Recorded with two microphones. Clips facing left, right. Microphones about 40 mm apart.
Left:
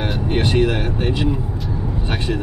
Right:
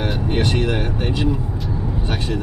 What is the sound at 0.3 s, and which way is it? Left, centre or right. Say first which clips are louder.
Speech: left 3 dB; centre.